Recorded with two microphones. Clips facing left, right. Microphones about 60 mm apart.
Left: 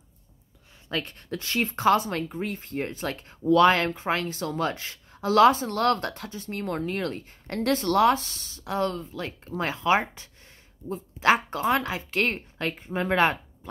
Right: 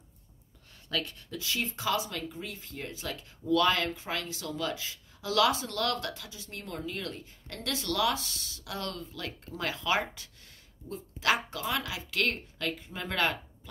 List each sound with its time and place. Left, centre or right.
0.8 s speech: left
1.3 s speech: left